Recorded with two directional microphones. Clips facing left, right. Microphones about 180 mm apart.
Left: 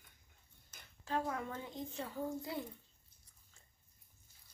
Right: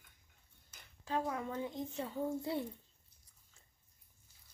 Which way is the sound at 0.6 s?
10° right (ahead or behind).